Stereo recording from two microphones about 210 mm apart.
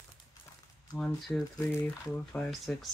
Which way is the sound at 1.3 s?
Centre (ahead or behind).